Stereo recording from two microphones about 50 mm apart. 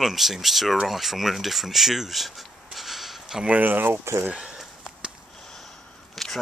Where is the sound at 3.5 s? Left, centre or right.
Right.